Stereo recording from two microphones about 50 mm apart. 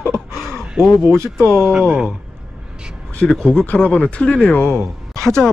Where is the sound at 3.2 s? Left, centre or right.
Centre.